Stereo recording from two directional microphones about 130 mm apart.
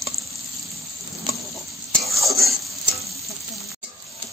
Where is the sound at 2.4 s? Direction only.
25° right (ahead or behind).